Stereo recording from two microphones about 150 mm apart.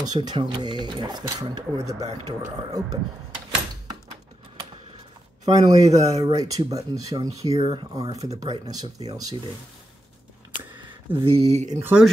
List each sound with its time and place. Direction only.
0.0 s speech: 25° right (ahead or behind)
5.4 s speech: 25° right (ahead or behind)
7.5 s speech: 35° right (ahead or behind)
10.7 s speech: 35° right (ahead or behind)
11.8 s speech: 10° right (ahead or behind)